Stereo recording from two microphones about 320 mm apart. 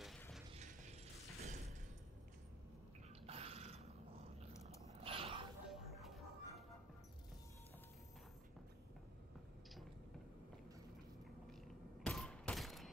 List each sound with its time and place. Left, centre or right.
0.0 s mechanisms: centre
0.5 s mechanisms: right
3.3 s a sound: centre
5.0 s gasp: centre
5.7 s music: centre
12.0 s fusillade: centre